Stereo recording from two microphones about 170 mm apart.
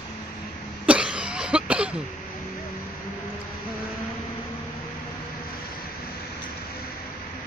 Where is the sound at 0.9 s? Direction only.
5° right (ahead or behind).